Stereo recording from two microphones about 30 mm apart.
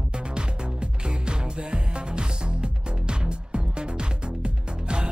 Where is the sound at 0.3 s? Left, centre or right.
Right.